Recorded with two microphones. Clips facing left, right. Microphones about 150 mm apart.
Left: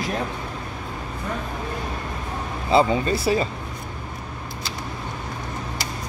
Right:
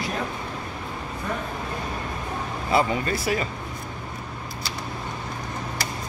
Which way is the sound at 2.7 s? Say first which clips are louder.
Left 4 dB; 25° left (ahead or behind).